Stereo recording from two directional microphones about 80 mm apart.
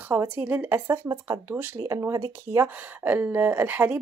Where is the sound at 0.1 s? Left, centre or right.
Right.